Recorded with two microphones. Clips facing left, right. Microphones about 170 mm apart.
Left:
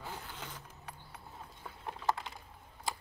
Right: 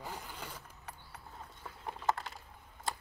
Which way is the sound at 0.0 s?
10° right (ahead or behind).